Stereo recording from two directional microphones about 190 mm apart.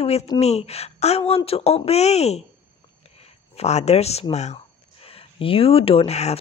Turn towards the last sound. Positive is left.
turn(degrees=35)  # may be behind; listen again after turning